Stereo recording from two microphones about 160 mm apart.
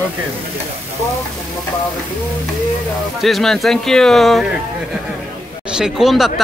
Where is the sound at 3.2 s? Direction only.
Centre (ahead or behind).